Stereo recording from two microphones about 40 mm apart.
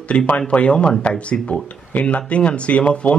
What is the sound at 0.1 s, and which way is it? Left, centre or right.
Speech, left.